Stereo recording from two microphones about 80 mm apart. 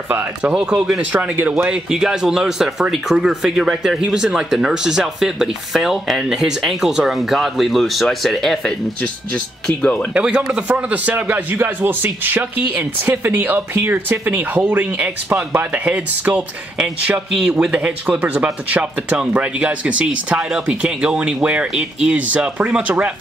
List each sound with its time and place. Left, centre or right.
0.1 s a man's voice: right
0.6 s speech: centre
1.1 s a man's voice: right
1.7 s speech: centre
10.1 s a man's voice: centre